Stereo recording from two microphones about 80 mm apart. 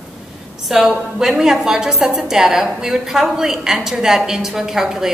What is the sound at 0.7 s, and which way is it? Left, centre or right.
A woman's voice, centre.